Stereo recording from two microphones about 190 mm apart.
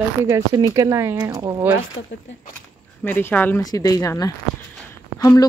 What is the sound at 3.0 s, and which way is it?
Speech, 10° left (ahead or behind).